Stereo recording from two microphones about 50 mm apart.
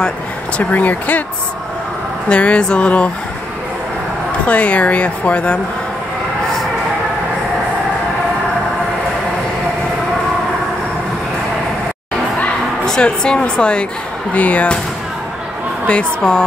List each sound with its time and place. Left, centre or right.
0.6 s speech: left
2.2 s a woman's voice: left
4.5 s a woman's voice: left
12.8 s a woman's voice: centre
14.3 s speech: left
16.2 s a woman's voice: centre